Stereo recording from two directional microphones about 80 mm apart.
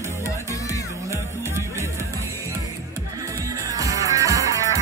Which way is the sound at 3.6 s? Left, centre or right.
Right.